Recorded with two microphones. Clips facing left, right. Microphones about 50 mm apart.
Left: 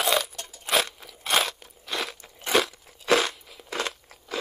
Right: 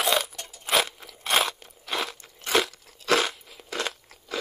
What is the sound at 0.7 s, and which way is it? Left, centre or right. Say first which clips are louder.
Crunch: right 1 dB; centre.